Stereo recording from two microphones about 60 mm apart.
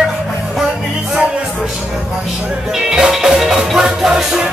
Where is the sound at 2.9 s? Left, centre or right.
Centre.